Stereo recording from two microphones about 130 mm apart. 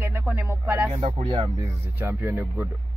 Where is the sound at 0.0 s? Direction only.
15° right (ahead or behind).